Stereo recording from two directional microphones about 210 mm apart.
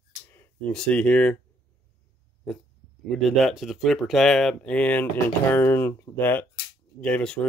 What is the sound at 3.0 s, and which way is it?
Speech, centre (ahead or behind).